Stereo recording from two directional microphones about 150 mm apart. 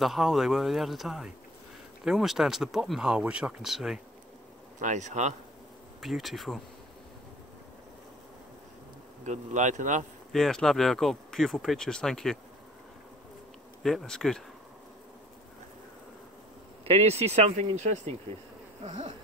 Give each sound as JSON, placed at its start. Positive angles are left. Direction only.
{"t": 0.0, "sound": "speech", "side_deg": 0}
{"t": 4.7, "sound": "speech", "side_deg": -55}
{"t": 5.9, "sound": "speech", "side_deg": 0}
{"t": 9.2, "sound": "speech", "side_deg": -55}
{"t": 10.3, "sound": "speech", "side_deg": 0}
{"t": 13.8, "sound": "speech", "side_deg": 5}
{"t": 16.8, "sound": "speech", "side_deg": -45}